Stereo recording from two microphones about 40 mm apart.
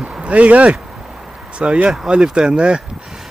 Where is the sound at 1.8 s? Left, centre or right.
Right.